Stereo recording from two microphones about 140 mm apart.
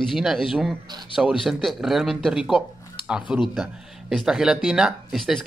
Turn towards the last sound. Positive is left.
turn(degrees=0)  # may be behind; listen again after turning